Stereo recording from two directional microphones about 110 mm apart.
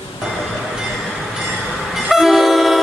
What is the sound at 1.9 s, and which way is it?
Train, 5° right (ahead or behind).